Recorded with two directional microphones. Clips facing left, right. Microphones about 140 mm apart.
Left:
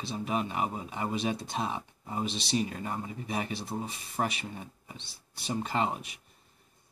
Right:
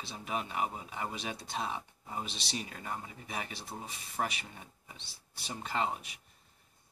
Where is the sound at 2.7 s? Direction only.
35° left (ahead or behind).